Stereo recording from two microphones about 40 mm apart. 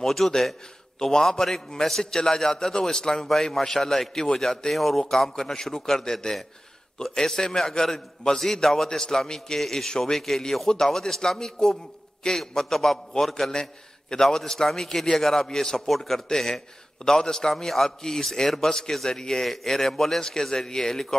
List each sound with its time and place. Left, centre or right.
0.0 s a man's voice: centre